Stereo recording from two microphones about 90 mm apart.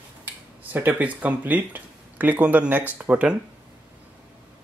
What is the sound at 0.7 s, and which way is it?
Speech, 20° right (ahead or behind).